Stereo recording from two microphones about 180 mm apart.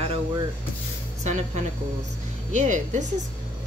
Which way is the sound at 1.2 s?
40° right (ahead or behind).